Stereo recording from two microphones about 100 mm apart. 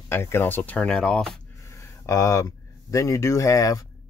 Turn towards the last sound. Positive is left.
turn(degrees=35)  # may be behind; listen again after turning